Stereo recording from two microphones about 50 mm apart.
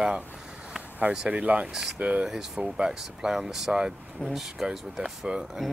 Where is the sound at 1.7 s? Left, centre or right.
Centre.